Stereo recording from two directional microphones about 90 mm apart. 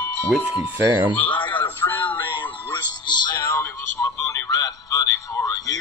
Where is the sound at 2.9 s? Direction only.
55° left (ahead or behind).